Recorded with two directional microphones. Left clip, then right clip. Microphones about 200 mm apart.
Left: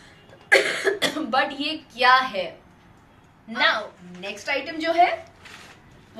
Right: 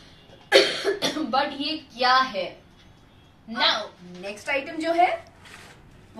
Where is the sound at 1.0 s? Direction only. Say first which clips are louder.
Left 2 dB; centre (ahead or behind).